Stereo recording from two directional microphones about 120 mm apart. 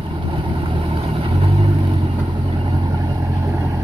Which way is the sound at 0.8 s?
50° right (ahead or behind).